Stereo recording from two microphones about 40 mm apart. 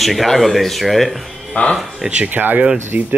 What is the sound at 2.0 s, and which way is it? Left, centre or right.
Speech, right.